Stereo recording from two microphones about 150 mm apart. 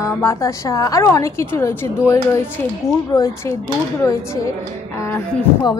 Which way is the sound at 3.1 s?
25° left (ahead or behind).